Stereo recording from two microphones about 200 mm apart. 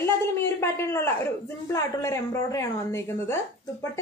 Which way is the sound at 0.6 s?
15° left (ahead or behind).